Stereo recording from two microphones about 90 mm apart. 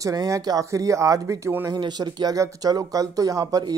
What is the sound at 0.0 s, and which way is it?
Speech, 40° right (ahead or behind).